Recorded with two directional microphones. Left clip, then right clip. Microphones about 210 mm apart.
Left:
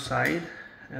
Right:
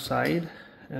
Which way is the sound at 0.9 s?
45° right (ahead or behind).